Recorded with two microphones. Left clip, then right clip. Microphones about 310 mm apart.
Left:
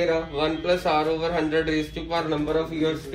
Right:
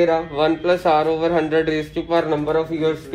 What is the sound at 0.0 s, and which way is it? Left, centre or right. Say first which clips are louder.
Speech: right 6 dB; right.